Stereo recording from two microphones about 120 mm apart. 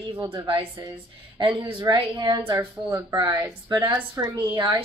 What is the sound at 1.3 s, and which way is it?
Speech, 40° right (ahead or behind).